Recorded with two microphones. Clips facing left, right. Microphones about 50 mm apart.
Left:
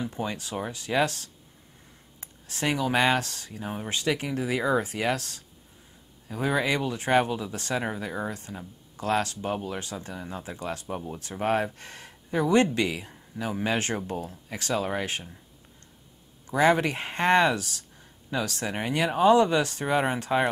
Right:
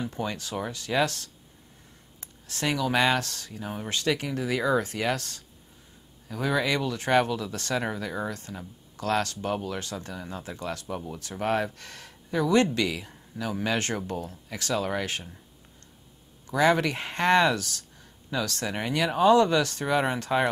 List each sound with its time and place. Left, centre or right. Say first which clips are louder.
0.0 s speech: even; left
6.2 s speech: even; left
16.4 s speech: left 1 dB; left